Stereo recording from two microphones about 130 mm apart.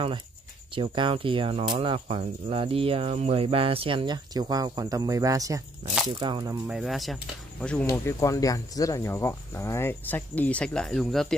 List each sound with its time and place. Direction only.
0.7 s speech: 40° right (ahead or behind)
6.7 s speech: centre (ahead or behind)
7.9 s speech: 20° left (ahead or behind); by 11.3 s 5° left (ahead or behind)